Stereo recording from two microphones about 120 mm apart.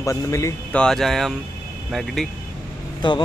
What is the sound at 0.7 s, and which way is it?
Speech, 5° left (ahead or behind).